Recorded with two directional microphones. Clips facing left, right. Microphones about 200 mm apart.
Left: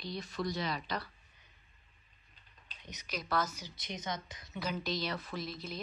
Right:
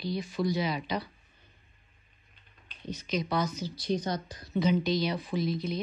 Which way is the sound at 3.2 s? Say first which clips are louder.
Right 2 dB; 5° left (ahead or behind).